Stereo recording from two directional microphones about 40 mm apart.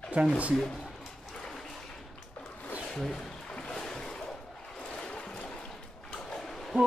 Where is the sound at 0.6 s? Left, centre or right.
Centre.